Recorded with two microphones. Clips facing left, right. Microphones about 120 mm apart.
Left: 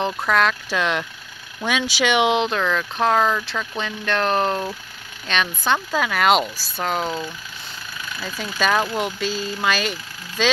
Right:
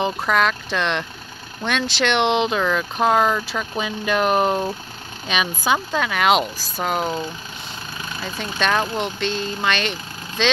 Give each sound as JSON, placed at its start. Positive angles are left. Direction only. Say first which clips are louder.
{"t": 0.0, "sound": "speech", "louder": "even", "side_deg": 0}
{"t": 8.0, "sound": "vehicle", "louder": "right 1 dB", "side_deg": -30}
{"t": 8.5, "sound": "speech", "louder": "left 1 dB", "side_deg": 5}